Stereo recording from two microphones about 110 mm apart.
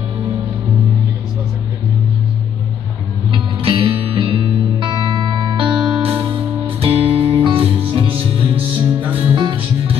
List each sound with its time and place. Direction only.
3.3 s music: 50° right (ahead or behind)
6.8 s music: 60° right (ahead or behind)
9.0 s music: 15° right (ahead or behind)
9.3 s music: 45° right (ahead or behind)